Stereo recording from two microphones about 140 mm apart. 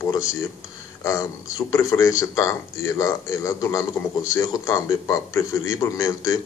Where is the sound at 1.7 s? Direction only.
20° left (ahead or behind).